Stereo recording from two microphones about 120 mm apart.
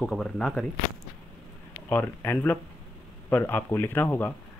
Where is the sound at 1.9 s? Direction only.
15° left (ahead or behind).